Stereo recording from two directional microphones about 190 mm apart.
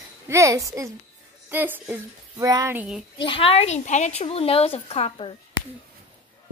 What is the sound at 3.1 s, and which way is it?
A woman's voice, 25° left (ahead or behind).